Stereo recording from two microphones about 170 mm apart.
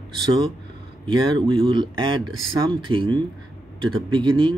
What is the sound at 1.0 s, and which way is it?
A man's voice, 30° right (ahead or behind).